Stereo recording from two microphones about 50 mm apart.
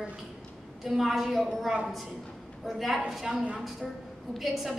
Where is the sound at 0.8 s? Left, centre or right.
Centre.